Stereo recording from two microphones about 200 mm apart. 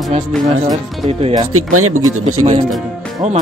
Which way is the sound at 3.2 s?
35° right (ahead or behind).